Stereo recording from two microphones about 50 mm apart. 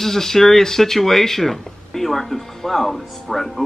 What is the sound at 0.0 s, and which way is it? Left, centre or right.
Speech, centre.